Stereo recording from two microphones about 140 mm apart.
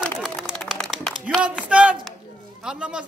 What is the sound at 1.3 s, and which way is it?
A man's voice, 10° right (ahead or behind).